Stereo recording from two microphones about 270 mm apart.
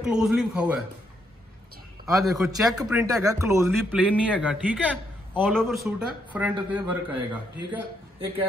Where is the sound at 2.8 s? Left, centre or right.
Centre.